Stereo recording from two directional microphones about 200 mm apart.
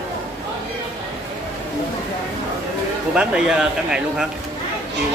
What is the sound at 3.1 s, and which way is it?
Speech, 5° right (ahead or behind).